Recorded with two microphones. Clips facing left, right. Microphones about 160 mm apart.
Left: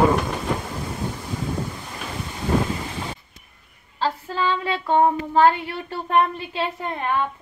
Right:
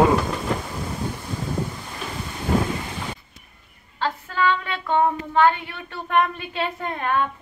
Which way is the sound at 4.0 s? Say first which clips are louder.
Even; 30° left (ahead or behind).